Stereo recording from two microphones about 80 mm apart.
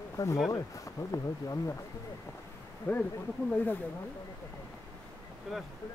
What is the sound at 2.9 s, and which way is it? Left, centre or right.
Speech, left.